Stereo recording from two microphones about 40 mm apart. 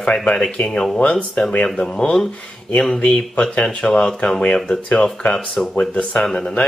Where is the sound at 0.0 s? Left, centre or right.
Left.